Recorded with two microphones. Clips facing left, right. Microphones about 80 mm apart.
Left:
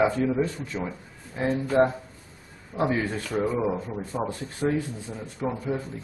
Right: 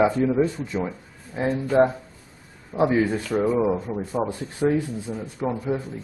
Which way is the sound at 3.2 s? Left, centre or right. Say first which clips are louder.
Right 4 dB; centre.